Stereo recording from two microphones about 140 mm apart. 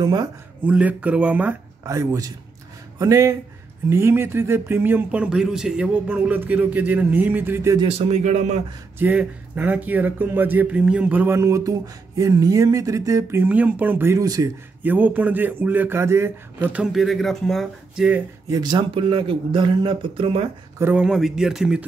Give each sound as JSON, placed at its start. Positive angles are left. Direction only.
{"t": 0.0, "sound": "speech", "side_deg": -30}
{"t": 0.7, "sound": "speech", "side_deg": -10}
{"t": 1.9, "sound": "speech", "side_deg": -20}
{"t": 8.1, "sound": "speech", "side_deg": -55}
{"t": 8.9, "sound": "speech", "side_deg": -10}
{"t": 14.2, "sound": "speech", "side_deg": -25}
{"t": 14.8, "sound": "speech", "side_deg": -10}
{"t": 18.5, "sound": "speech", "side_deg": -30}
{"t": 20.8, "sound": "speech", "side_deg": -5}